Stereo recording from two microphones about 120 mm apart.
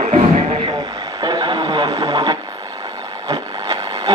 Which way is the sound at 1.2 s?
40° right (ahead or behind).